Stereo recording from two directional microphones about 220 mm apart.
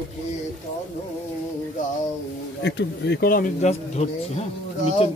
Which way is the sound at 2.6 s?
50° left (ahead or behind).